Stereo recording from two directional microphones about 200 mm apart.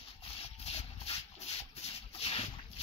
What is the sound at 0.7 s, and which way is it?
Rub, 30° left (ahead or behind).